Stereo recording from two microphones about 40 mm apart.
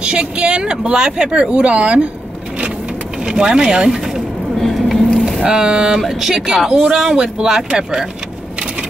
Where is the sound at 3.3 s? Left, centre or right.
Right.